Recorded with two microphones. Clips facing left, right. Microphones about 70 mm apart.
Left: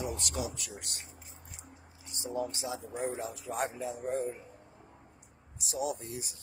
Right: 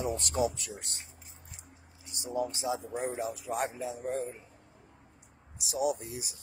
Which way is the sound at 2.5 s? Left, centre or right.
Right.